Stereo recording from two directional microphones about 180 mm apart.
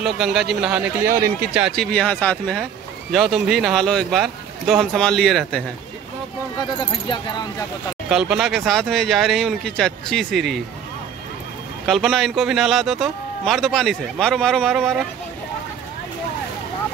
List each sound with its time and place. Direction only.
0.0 s a man's voice: centre (ahead or behind)
1.6 s a man's voice: centre (ahead or behind)
6.8 s speech: 25° left (ahead or behind)
8.1 s a man's voice: 5° right (ahead or behind)
11.8 s a man's voice: centre (ahead or behind)